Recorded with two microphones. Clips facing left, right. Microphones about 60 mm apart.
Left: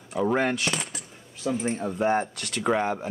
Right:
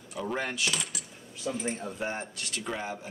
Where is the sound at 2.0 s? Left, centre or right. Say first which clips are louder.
Left 10 dB; left.